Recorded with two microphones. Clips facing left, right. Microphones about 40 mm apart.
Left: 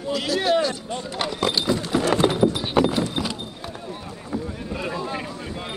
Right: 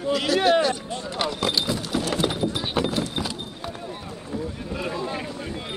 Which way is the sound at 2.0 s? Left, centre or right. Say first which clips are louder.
Left 7 dB; left.